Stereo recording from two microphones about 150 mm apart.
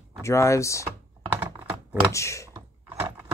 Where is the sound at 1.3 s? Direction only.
15° right (ahead or behind).